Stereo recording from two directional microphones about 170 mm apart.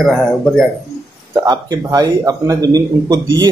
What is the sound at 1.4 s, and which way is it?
A man's voice, 20° right (ahead or behind).